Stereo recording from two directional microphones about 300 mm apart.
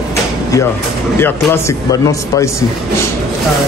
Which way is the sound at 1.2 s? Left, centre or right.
Centre.